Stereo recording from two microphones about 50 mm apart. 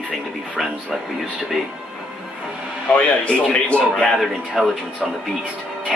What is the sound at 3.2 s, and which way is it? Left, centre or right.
Speech, left.